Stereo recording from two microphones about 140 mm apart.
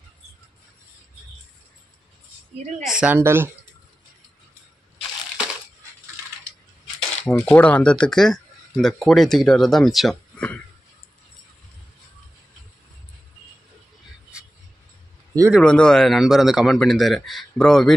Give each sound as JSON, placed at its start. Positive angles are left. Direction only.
{"t": 2.8, "sound": "a man's voice", "side_deg": -5}
{"t": 3.2, "sound": "speech", "side_deg": -20}
{"t": 7.0, "sound": "speech", "side_deg": 10}
{"t": 14.3, "sound": "music", "side_deg": -5}
{"t": 15.6, "sound": "a man's voice", "side_deg": 5}